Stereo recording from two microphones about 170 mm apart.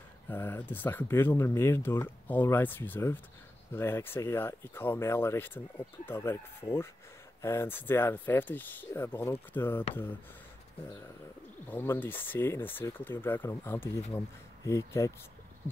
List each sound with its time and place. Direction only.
0.3 s speech: 10° left (ahead or behind)
11.6 s speech: 10° left (ahead or behind)